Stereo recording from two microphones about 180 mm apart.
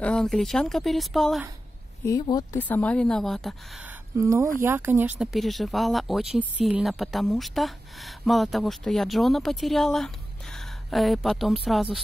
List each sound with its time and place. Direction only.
0.0 s speech: 5° left (ahead or behind)
2.0 s speech: 20° left (ahead or behind)
2.7 s speech: 5° left (ahead or behind)
3.8 s speech: 15° right (ahead or behind)
5.3 s speech: centre (ahead or behind)